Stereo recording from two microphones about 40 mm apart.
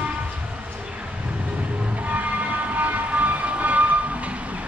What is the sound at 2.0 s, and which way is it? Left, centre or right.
Train, right.